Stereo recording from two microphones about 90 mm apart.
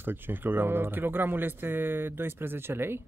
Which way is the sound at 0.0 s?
25° right (ahead or behind).